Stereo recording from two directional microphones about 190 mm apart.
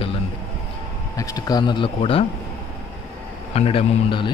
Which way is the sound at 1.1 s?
20° left (ahead or behind).